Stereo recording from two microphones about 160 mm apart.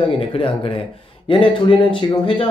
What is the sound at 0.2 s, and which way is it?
Speech, 35° left (ahead or behind).